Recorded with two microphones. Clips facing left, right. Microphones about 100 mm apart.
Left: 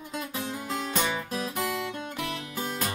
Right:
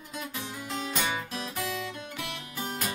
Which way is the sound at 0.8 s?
40° left (ahead or behind).